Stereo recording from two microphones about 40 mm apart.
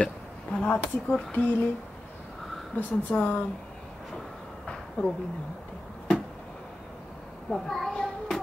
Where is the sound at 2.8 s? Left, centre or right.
Left.